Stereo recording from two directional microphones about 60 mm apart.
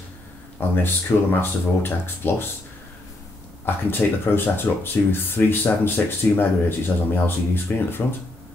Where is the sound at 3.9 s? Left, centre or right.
Left.